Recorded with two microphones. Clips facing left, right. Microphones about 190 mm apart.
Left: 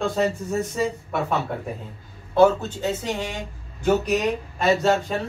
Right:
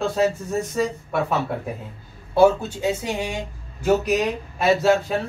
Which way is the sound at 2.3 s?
10° right (ahead or behind).